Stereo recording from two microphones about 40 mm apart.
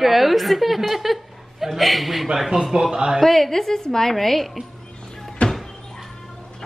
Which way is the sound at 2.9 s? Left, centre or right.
Right.